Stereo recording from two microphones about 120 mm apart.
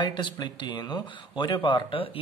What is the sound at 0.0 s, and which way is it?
Speech, 40° left (ahead or behind).